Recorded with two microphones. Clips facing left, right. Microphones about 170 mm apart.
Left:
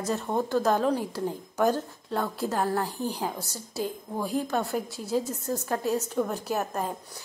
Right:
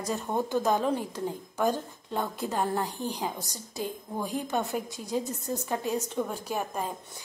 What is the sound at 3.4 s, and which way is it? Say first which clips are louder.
Speech: left 3 dB; 15° right (ahead or behind).